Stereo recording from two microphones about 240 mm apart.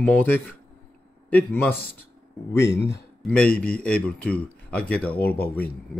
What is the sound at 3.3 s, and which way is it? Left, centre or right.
A man's voice, centre.